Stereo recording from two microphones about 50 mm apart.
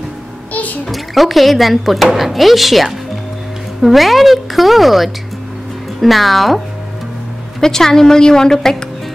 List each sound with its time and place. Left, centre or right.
0.5 s a sound: left
0.8 s speech: centre
7.6 s a woman's voice: centre